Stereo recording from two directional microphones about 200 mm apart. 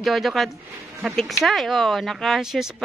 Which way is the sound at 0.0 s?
Centre (ahead or behind).